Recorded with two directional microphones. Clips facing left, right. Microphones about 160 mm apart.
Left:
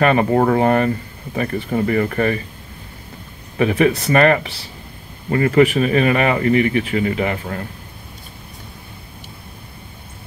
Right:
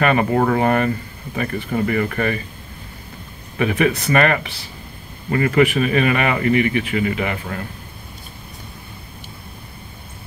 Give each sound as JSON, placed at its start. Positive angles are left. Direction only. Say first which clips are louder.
{"t": 0.0, "sound": "speech", "louder": "left 2 dB", "side_deg": 35}
{"t": 3.5, "sound": "speech", "louder": "left 3 dB", "side_deg": 30}